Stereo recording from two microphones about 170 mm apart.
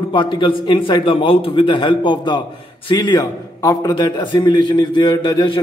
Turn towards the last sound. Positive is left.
turn(degrees=25)  # may be behind; listen again after turning